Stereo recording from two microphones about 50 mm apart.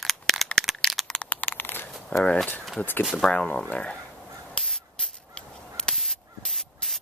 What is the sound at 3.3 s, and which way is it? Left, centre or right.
Speech, left.